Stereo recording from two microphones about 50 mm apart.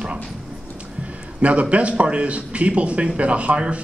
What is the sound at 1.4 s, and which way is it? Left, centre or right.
A man's voice, right.